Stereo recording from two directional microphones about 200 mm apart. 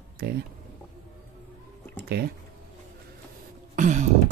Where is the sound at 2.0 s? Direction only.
50° right (ahead or behind).